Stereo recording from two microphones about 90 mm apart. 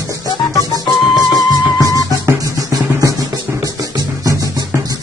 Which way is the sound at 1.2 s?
40° left (ahead or behind).